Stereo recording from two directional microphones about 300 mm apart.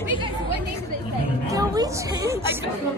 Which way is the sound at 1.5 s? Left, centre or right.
Centre.